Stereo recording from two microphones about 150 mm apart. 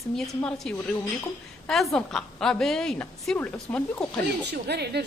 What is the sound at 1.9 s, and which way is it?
A woman's voice, 5° left (ahead or behind).